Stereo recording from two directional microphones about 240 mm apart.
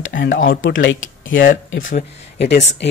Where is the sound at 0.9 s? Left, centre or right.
Left.